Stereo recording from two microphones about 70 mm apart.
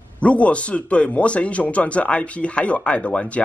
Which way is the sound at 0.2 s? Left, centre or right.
Centre.